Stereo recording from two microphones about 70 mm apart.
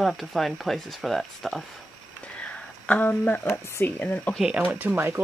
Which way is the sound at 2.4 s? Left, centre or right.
Centre.